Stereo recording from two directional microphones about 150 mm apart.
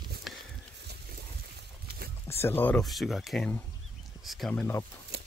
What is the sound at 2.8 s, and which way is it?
Speech, centre (ahead or behind).